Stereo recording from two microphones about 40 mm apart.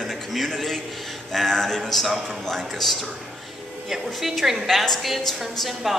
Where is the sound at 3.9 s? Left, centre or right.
Centre.